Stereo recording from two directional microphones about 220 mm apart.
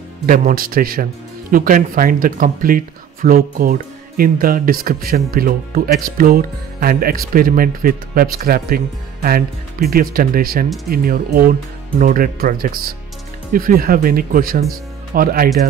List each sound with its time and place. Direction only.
0.3 s speech: 40° right (ahead or behind)